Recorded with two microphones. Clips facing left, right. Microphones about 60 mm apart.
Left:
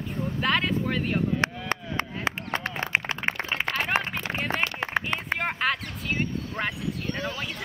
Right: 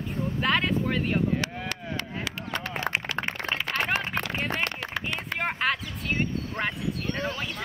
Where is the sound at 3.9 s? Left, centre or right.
Left.